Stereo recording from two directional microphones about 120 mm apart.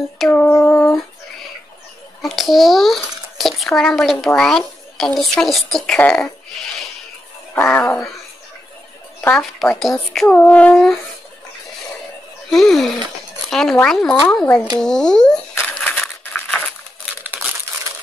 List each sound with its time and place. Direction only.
0.3 s a sound: 20° left (ahead or behind)
2.2 s a child's voice: centre (ahead or behind); by 8.0 s 15° left (ahead or behind)
9.3 s a woman's voice: 5° left (ahead or behind)
10.2 s speech: 10° left (ahead or behind)
12.4 s a woman's voice: centre (ahead or behind)
15.6 s a sound: 10° left (ahead or behind)
17.2 s crumpling: 15° right (ahead or behind)